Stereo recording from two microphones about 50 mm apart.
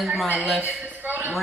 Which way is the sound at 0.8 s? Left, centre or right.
Right.